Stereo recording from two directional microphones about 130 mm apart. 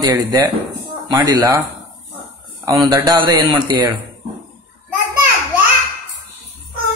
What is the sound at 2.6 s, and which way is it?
A man's voice, 30° right (ahead or behind).